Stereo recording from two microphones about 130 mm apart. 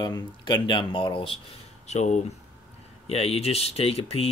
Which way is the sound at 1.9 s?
60° left (ahead or behind).